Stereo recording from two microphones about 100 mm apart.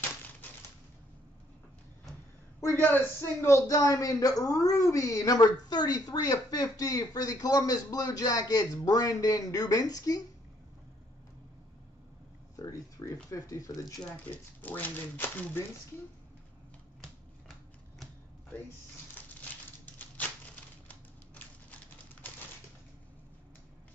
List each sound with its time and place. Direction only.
2.7 s a man's voice: 20° left (ahead or behind); by 10.2 s 40° left (ahead or behind)
12.5 s speech: 35° left (ahead or behind)
14.6 s speech: 15° left (ahead or behind)
17.0 s typewriter: 5° left (ahead or behind)
20.0 s typewriter: 15° left (ahead or behind)